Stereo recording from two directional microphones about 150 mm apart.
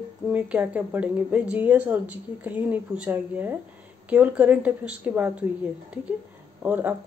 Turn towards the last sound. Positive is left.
turn(degrees=-10)  # may be behind; listen again after turning